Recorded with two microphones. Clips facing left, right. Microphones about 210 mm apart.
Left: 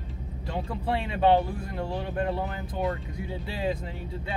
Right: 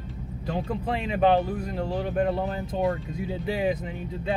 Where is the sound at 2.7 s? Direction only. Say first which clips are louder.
Right 3 dB; 25° right (ahead or behind).